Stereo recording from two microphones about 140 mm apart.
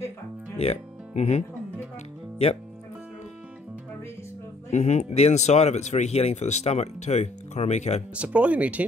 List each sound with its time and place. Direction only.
0.6 s music: 50° left (ahead or behind)
4.6 s speech: 55° left (ahead or behind)
8.1 s speech: 10° right (ahead or behind)